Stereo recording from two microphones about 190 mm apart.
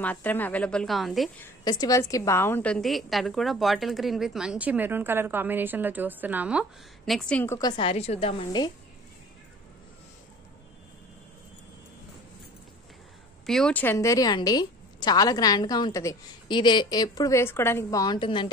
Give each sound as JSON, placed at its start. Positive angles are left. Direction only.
{"t": 0.0, "sound": "a woman's voice", "side_deg": 10}
{"t": 1.4, "sound": "a woman's voice", "side_deg": 20}
{"t": 7.1, "sound": "a woman's voice", "side_deg": 5}
{"t": 13.5, "sound": "a woman's voice", "side_deg": 5}